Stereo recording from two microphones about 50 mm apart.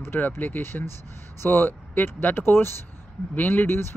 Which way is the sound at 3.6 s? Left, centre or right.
Left.